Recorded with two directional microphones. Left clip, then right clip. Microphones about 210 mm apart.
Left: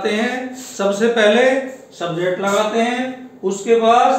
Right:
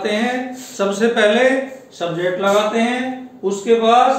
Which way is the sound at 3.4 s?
10° left (ahead or behind).